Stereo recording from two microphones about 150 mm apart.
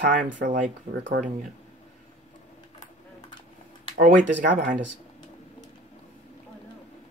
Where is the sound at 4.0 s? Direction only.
60° right (ahead or behind).